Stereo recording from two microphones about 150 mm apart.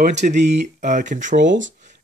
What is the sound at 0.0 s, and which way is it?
Speech, 50° right (ahead or behind).